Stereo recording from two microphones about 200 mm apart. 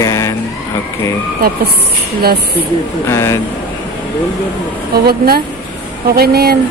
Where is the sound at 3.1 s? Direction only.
15° left (ahead or behind).